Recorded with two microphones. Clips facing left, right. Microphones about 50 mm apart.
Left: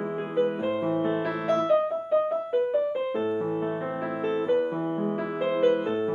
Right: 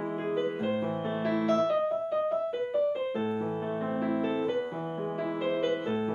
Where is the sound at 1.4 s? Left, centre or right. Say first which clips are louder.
Left 4 dB; left.